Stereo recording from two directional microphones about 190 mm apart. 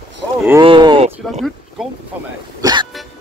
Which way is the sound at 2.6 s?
20° right (ahead or behind).